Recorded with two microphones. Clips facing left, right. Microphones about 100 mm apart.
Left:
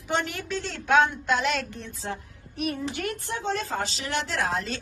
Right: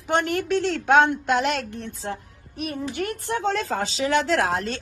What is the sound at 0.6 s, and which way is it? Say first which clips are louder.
A woman's voice: right 3 dB; 70° right (ahead or behind).